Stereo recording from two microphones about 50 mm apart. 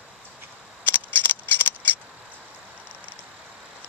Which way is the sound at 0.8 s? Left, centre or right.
Left.